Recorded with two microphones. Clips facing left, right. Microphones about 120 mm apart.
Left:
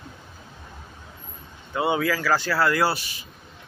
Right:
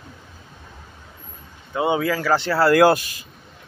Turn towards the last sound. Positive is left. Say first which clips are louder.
# right 9 dB
turn(degrees=-50)  # may be behind; listen again after turning